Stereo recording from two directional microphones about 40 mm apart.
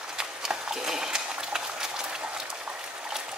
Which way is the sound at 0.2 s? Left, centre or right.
Centre.